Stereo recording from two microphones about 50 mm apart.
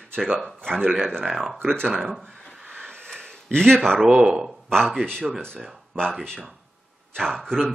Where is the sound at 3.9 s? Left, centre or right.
Centre.